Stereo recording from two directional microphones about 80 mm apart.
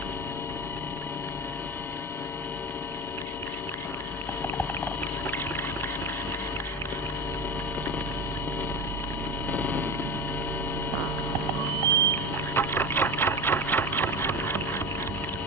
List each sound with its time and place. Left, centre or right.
4.6 s a sound: left
9.5 s vehicle: left
11.9 s sewing machine: left